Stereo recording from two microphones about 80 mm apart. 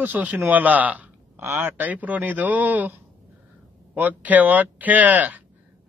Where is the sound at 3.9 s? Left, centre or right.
Right.